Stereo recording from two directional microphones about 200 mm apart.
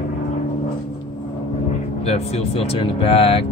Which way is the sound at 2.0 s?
30° left (ahead or behind).